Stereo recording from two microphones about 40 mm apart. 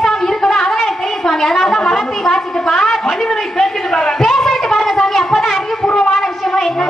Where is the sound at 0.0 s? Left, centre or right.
Centre.